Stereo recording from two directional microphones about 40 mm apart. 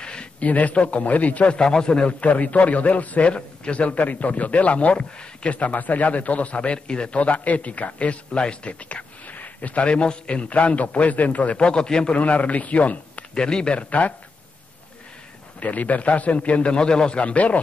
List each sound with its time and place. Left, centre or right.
0.0 s a sound: left
0.5 s a man's voice: left
1.6 s a man's voice: centre; by 3.3 s left
3.3 s a man's voice: left
9.8 s a man's voice: left
12.2 s a man's voice: left
13.3 s a man's voice: left
15.6 s a man's voice: left